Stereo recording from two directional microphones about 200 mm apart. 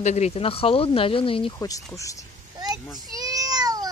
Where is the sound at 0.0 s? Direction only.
35° left (ahead or behind); by 2.2 s 15° left (ahead or behind).